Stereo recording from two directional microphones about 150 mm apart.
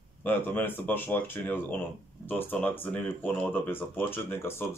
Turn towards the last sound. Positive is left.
turn(degrees=15)  # may be behind; listen again after turning